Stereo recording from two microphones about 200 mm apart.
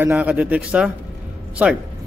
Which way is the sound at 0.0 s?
5° right (ahead or behind).